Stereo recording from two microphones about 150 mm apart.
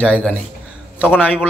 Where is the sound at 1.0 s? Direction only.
10° left (ahead or behind).